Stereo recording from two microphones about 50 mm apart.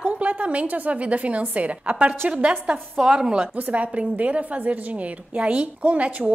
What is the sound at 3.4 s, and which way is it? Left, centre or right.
A woman's voice, right.